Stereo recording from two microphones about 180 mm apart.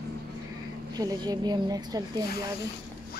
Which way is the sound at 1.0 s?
20° right (ahead or behind).